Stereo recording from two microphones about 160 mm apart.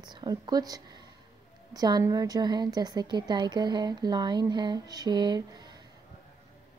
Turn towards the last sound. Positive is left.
turn(degrees=-25)  # may be behind; listen again after turning